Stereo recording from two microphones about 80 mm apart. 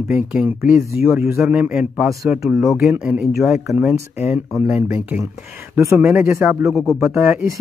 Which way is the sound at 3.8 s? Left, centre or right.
Right.